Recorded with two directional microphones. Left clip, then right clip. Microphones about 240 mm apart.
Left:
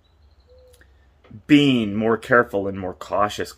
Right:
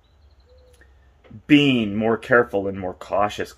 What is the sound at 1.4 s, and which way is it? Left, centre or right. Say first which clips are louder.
Speech: even; centre.